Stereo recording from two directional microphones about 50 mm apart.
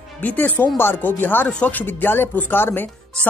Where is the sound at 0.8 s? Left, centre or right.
Left.